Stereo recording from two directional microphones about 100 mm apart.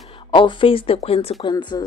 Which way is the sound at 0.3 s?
55° left (ahead or behind).